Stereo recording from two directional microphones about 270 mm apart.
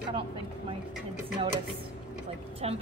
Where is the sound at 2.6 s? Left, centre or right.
Right.